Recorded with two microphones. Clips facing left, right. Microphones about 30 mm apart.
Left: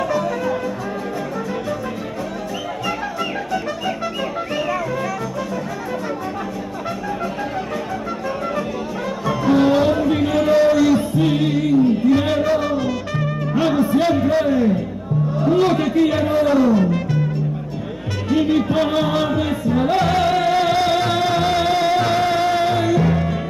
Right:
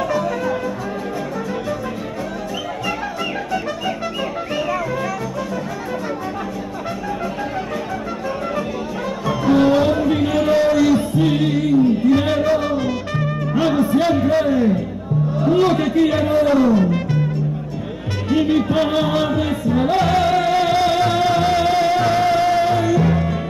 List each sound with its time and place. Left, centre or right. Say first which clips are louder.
0.0 s music: even; centre
2.8 s music: left 1 dB; centre
9.2 s music: right 1 dB; centre
15.6 s speech: right 1 dB; centre
18.3 s music: even; centre